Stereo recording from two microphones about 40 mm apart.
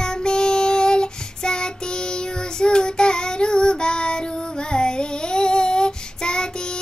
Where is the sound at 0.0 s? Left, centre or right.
Centre.